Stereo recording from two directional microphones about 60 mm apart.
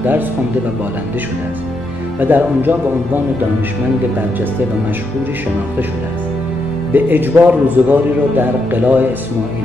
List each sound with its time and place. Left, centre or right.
2.1 s speech: right
6.9 s speech: right